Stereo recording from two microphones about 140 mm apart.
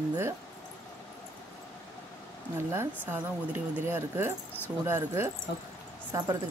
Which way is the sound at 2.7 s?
20° right (ahead or behind).